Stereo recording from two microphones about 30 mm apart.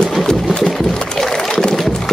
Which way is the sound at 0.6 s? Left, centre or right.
Centre.